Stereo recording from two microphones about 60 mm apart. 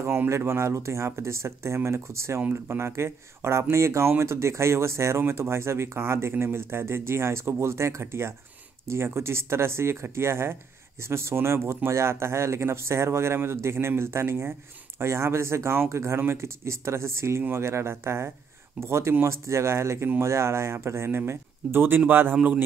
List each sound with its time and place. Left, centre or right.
0.3 s speech: right